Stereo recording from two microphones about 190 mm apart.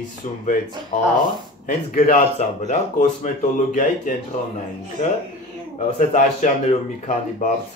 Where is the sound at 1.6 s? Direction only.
40° left (ahead or behind).